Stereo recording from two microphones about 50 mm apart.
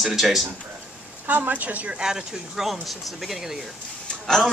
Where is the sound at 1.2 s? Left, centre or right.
Right.